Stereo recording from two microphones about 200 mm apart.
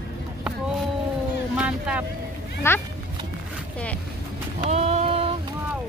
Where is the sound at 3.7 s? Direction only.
5° left (ahead or behind).